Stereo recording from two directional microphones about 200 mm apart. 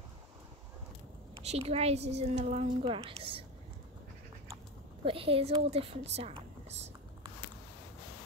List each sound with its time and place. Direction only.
1.4 s a woman's voice: 30° right (ahead or behind)
5.0 s a woman's voice: 25° right (ahead or behind)